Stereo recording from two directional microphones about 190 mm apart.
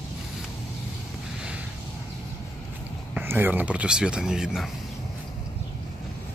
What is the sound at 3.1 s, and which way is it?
Speech, 10° right (ahead or behind).